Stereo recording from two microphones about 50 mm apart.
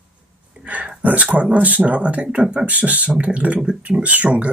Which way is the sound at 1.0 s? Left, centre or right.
Right.